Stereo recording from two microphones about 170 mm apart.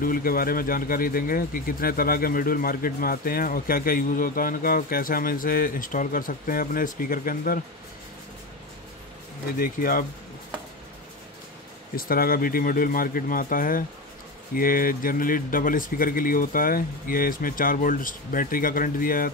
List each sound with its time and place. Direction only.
0.0 s speech: 55° left (ahead or behind)
9.6 s speech: 55° left (ahead or behind)
11.9 s speech: 60° left (ahead or behind)